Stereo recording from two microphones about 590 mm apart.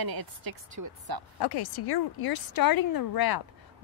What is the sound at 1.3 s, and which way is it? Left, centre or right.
A woman's voice, left.